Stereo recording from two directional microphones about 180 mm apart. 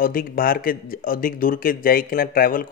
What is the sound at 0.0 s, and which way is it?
Speech, 50° left (ahead or behind).